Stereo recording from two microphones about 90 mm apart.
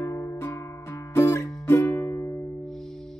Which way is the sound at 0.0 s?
30° left (ahead or behind).